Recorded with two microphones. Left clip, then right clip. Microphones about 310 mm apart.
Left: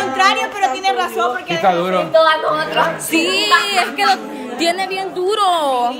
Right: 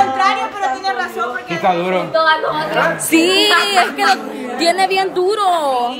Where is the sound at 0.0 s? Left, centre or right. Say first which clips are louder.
Right 1 dB; left.